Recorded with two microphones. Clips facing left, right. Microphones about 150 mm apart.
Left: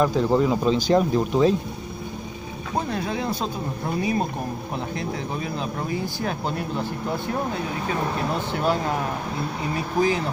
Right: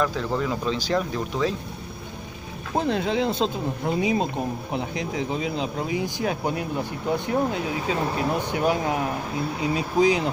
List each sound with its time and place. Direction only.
0.0 s speech: 20° left (ahead or behind)
2.9 s speech: 25° right (ahead or behind)